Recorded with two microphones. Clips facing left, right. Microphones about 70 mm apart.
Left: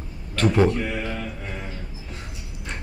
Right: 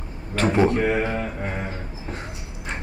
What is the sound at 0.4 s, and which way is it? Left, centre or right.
Speech, centre.